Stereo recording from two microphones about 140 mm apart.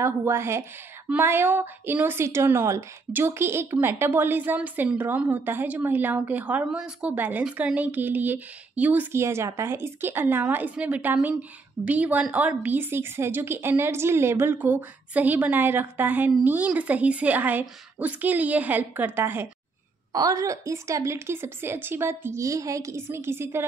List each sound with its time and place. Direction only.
0.0 s a woman's voice: 20° right (ahead or behind)
20.1 s a woman's voice: 25° right (ahead or behind)